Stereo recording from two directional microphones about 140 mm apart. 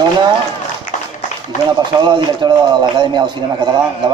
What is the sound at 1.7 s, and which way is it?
A man's voice, 30° right (ahead or behind).